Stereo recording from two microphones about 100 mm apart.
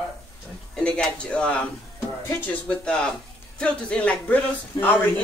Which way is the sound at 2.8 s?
10° left (ahead or behind).